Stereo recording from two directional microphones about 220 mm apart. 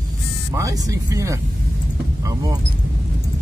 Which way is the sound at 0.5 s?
15° right (ahead or behind).